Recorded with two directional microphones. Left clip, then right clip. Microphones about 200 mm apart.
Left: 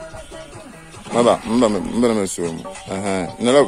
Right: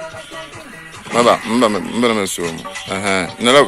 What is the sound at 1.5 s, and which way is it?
Speech, 15° left (ahead or behind).